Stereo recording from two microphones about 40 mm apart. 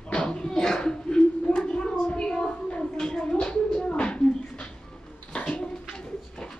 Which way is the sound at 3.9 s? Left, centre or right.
Left.